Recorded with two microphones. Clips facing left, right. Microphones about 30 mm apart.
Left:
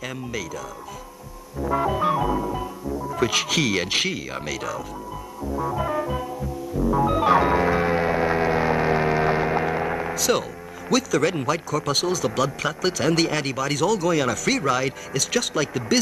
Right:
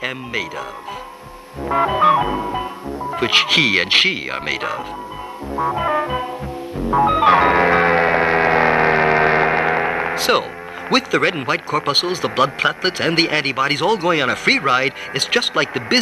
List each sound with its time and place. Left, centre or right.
0.0 s music: right
1.6 s music: right
3.1 s speech: right
5.6 s music: right
10.9 s speech: right